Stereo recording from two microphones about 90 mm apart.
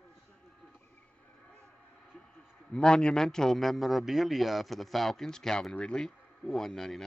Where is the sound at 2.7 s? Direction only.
10° left (ahead or behind).